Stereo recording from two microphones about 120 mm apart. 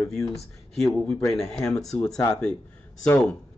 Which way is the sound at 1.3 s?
Centre (ahead or behind).